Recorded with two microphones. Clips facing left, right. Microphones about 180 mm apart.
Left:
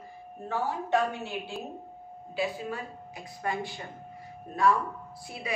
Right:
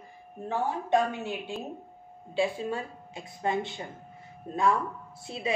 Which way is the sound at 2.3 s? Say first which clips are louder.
Right 4 dB; 30° right (ahead or behind).